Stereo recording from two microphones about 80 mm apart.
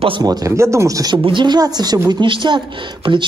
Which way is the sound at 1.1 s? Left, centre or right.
Right.